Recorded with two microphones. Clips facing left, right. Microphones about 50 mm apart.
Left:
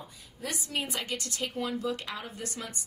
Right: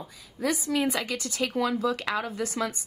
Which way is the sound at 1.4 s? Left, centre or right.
Right.